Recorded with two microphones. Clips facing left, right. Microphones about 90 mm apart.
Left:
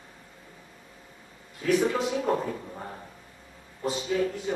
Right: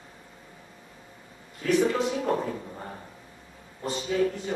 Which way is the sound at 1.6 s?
Centre (ahead or behind).